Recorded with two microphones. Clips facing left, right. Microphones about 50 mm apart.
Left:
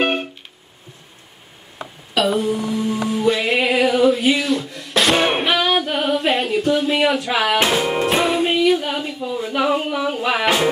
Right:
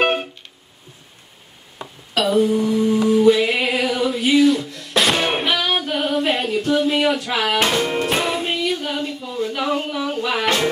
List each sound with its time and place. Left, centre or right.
2.1 s a sound: centre
3.1 s music: centre
5.1 s music: centre